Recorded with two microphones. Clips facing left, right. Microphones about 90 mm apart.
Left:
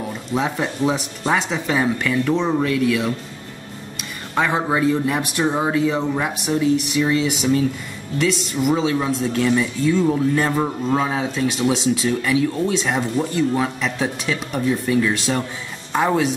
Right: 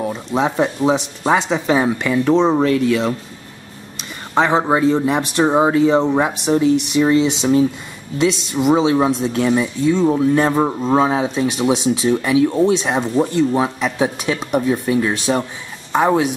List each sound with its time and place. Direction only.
0.3 s speech: 20° right (ahead or behind)
4.4 s speech: 25° right (ahead or behind)
8.6 s speech: 30° right (ahead or behind)
9.3 s speech: 15° right (ahead or behind)
14.7 s speech: 30° right (ahead or behind)